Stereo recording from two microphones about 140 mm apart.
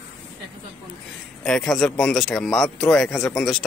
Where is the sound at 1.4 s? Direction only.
5° left (ahead or behind).